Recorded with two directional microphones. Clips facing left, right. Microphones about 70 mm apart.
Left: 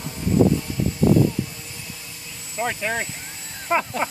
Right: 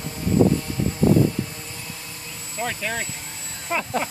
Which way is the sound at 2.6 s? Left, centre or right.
Centre.